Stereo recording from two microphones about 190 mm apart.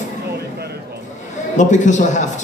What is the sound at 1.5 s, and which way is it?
Speech, 40° left (ahead or behind).